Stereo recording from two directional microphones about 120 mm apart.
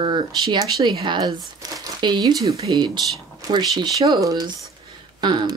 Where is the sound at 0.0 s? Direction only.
40° right (ahead or behind).